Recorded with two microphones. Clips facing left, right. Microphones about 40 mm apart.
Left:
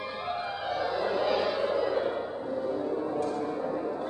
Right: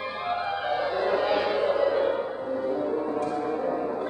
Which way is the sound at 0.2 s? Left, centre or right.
Right.